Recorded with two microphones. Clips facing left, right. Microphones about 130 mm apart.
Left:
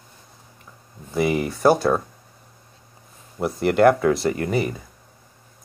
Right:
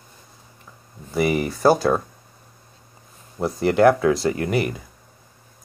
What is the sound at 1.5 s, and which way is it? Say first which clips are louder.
Speech: even; 20° left (ahead or behind).